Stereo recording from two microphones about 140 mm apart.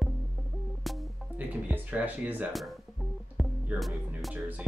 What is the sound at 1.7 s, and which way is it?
Speech, 10° right (ahead or behind).